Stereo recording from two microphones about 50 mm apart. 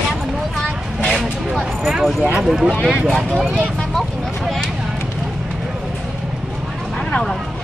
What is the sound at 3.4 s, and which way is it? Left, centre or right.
Speech, centre.